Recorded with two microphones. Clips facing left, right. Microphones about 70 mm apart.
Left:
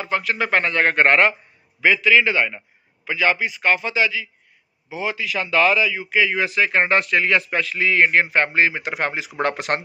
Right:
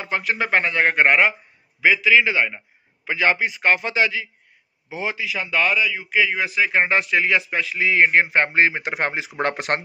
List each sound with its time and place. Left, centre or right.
0.0 s speech: right
3.1 s a man's voice: right
5.4 s speech: centre; by 9.8 s right